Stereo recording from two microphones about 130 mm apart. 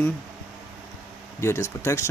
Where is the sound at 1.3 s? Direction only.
20° left (ahead or behind).